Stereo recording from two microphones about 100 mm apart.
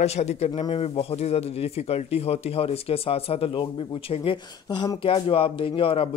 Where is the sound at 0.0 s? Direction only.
90° left; by 4.4 s 65° left (ahead or behind).